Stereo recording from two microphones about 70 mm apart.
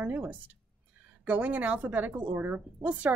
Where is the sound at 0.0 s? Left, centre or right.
Right.